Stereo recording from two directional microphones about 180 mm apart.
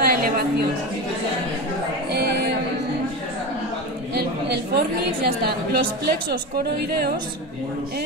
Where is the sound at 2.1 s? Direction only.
65° right (ahead or behind).